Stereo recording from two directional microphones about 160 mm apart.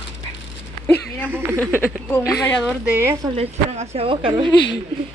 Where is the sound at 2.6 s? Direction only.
10° right (ahead or behind).